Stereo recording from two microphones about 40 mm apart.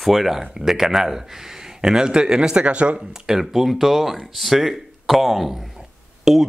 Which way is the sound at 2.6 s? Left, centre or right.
Right.